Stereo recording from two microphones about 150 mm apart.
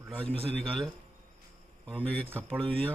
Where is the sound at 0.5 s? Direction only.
5° left (ahead or behind).